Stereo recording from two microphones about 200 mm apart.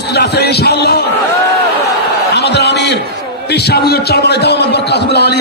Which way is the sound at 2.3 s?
55° left (ahead or behind).